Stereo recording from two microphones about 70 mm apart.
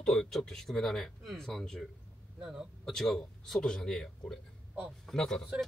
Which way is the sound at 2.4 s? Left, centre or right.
Centre.